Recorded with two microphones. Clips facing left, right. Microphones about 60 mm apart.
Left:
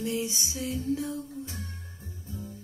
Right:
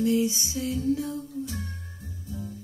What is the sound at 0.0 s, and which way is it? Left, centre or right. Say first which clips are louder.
Female singing: right 7 dB; left.